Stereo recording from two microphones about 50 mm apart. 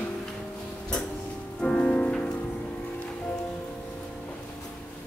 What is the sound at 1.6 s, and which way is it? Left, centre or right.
Music, left.